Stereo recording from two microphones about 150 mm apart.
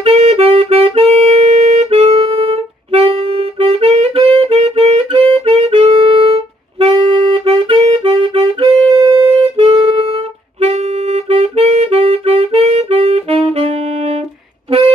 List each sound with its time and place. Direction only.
0.0 s music: 40° right (ahead or behind)
7.3 s music: 35° right (ahead or behind)
10.6 s saxophone: 45° right (ahead or behind)